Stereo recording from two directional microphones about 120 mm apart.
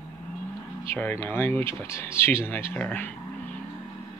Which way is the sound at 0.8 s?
15° left (ahead or behind).